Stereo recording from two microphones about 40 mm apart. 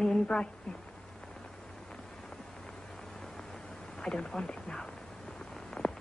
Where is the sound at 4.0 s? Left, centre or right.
Centre.